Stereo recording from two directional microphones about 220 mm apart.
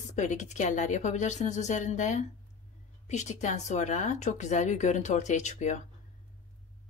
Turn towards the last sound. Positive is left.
turn(degrees=30)  # may be behind; listen again after turning